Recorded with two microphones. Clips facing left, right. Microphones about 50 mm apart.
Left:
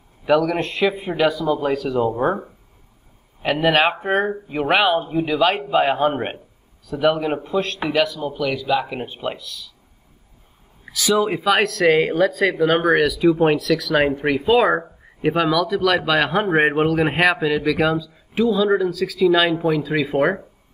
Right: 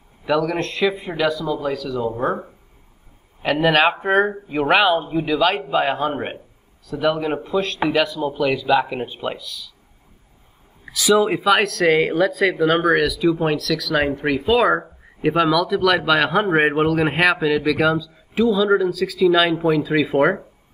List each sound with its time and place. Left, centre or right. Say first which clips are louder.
0.2 s speech: left 2 dB; centre
1.5 s speech: left 3 dB; left
3.4 s speech: right 1 dB; centre
6.0 s a man's voice: left 3 dB; left
7.2 s speech: even; centre
10.9 s speech: right 2 dB; centre